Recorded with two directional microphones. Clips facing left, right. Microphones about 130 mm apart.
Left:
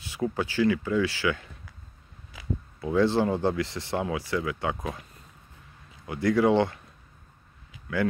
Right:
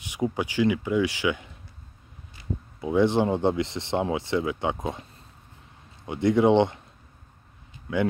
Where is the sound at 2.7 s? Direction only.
15° right (ahead or behind).